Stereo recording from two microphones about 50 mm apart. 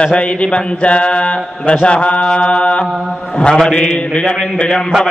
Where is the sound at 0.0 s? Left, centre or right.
Left.